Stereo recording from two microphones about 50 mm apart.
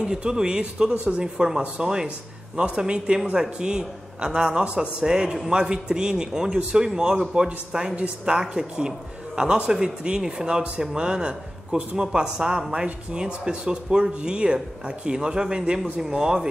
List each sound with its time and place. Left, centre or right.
0.0 s speech: centre